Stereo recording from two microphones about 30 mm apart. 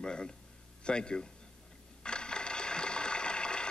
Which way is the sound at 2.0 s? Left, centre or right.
Left.